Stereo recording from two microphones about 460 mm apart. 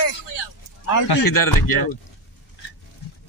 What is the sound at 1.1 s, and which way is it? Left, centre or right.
Speech, left.